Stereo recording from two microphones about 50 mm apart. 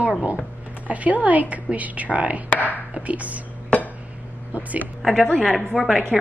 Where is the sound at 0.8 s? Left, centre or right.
Right.